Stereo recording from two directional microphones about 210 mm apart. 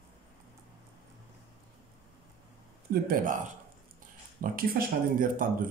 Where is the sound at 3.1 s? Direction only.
40° right (ahead or behind).